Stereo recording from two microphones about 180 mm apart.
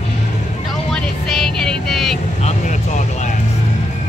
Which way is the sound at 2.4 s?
40° left (ahead or behind).